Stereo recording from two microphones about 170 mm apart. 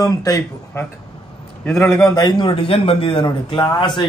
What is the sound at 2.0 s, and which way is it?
Speech, 20° left (ahead or behind).